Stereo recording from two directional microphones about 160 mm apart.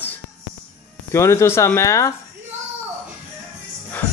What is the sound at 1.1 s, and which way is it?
Speech, 15° left (ahead or behind).